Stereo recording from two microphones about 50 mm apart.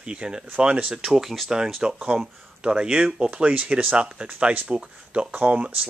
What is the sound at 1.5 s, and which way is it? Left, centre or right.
Speech, centre.